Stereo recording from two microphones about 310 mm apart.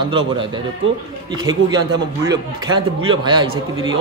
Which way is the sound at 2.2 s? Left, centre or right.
Centre.